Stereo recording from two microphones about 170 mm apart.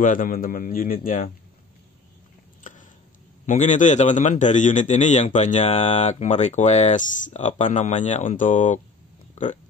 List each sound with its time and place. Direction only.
0.0 s speech: 55° left (ahead or behind)
3.4 s a man's voice: 45° left (ahead or behind)
9.3 s a sound: 45° left (ahead or behind)